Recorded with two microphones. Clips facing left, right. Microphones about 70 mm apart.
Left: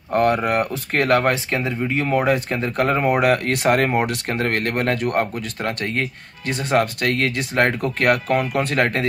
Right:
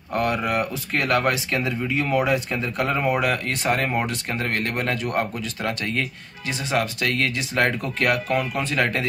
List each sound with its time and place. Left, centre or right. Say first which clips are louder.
0.1 s speech: left 5 dB; left
3.2 s speech: left 5 dB; left